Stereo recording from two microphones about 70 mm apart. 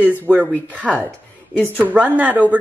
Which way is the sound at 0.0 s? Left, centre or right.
Right.